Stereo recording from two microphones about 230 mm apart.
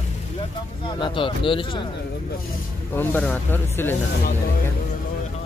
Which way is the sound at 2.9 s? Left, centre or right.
Centre.